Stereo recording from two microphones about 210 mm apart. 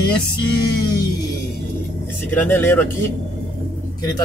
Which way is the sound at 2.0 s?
10° left (ahead or behind).